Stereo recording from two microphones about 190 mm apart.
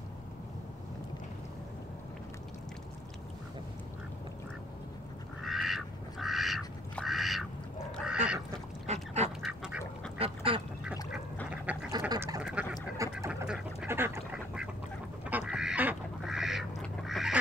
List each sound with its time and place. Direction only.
5.4 s duck: centre (ahead or behind)
8.8 s duck: 35° right (ahead or behind)
9.4 s duck: 5° right (ahead or behind)
10.1 s duck: 30° right (ahead or behind)
11.5 s duck: 5° right (ahead or behind)
12.1 s duck: 20° right (ahead or behind)
12.6 s duck: 5° right (ahead or behind)